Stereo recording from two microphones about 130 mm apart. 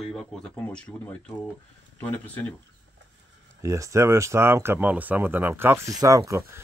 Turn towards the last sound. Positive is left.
turn(degrees=-20)  # may be behind; listen again after turning